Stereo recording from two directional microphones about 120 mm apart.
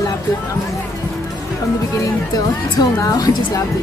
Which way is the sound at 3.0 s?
30° left (ahead or behind).